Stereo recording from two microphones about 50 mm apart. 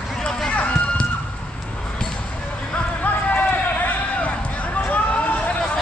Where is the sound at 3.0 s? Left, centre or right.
Left.